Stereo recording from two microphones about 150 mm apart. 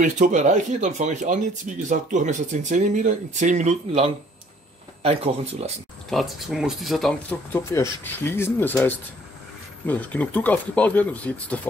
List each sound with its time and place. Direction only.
0.0 s speech: 55° right (ahead or behind)
6.0 s speech: centre (ahead or behind)
7.5 s speech: 20° left (ahead or behind)